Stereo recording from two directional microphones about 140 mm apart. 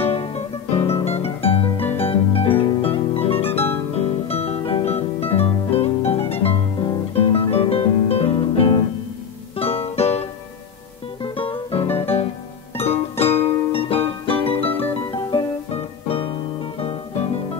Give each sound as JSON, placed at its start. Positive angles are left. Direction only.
{"t": 0.0, "sound": "music", "side_deg": 45}
{"t": 3.4, "sound": "music", "side_deg": 15}
{"t": 3.9, "sound": "music", "side_deg": 45}
{"t": 11.2, "sound": "music", "side_deg": 40}